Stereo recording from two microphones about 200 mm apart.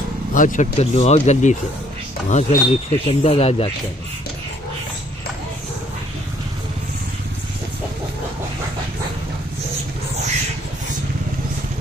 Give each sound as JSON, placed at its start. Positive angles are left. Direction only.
{"t": 0.3, "sound": "speech", "side_deg": 40}